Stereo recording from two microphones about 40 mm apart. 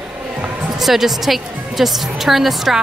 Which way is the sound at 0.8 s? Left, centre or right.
Centre.